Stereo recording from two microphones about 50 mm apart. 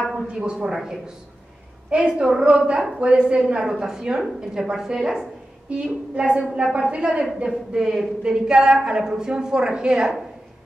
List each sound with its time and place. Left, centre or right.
0.3 s a woman's voice: right
7.4 s a woman's voice: centre